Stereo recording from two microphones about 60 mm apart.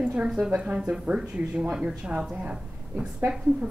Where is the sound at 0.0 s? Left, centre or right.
Centre.